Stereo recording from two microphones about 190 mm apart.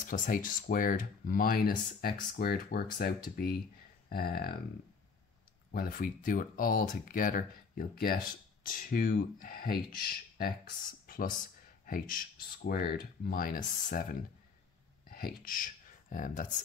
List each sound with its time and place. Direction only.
0.0 s speech: 45° left (ahead or behind)
5.7 s speech: 50° left (ahead or behind)
11.1 s a sound: 50° left (ahead or behind)
11.8 s speech: 45° left (ahead or behind)
15.0 s speech: 50° left (ahead or behind)